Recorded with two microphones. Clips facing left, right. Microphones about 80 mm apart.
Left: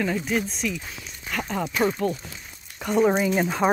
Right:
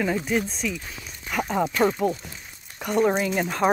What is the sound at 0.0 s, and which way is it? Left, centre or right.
Speech, centre.